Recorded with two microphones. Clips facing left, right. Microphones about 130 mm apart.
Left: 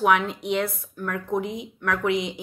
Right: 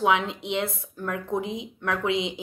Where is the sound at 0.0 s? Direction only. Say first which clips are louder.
Left 2 dB; 20° right (ahead or behind).